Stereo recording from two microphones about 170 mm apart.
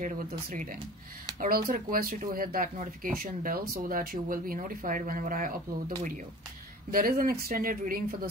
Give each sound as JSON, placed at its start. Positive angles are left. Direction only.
{"t": 0.0, "sound": "speech", "side_deg": -50}